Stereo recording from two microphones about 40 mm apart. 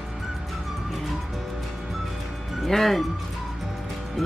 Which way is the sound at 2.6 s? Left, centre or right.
Centre.